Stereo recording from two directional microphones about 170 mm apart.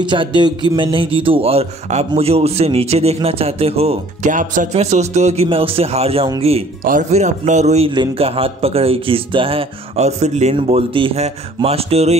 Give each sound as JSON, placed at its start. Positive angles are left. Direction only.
{"t": 0.0, "sound": "a man's voice", "side_deg": -30}
{"t": 6.8, "sound": "a man's voice", "side_deg": -50}